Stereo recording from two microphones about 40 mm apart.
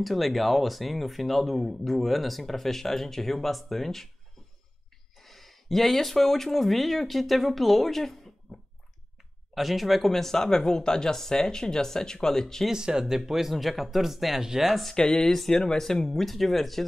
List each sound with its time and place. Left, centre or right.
0.0 s speech: centre
5.2 s speech: centre
9.5 s speech: centre
12.7 s speech: centre
15.0 s speech: centre
15.5 s speech: centre